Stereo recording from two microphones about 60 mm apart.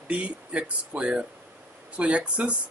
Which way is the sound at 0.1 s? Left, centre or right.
Centre.